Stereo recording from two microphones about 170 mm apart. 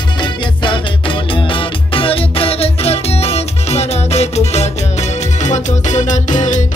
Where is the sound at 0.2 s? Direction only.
30° left (ahead or behind).